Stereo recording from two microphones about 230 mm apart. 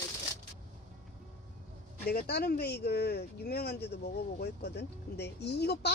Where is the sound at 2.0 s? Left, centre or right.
Left.